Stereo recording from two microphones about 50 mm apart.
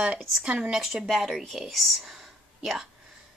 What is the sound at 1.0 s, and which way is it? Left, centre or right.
Speech, centre.